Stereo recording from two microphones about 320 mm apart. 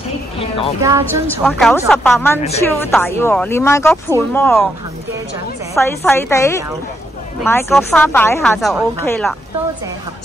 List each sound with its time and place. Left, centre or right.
0.4 s speech: centre
0.8 s speech: centre
1.2 s speech: centre
5.8 s speech: centre